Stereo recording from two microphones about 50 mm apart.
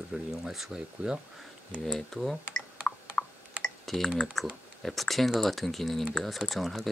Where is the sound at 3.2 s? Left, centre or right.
Centre.